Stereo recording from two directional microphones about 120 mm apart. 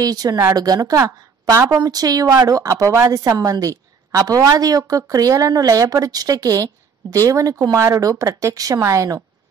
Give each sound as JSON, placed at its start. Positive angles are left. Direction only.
{"t": 0.0, "sound": "a woman's voice", "side_deg": -30}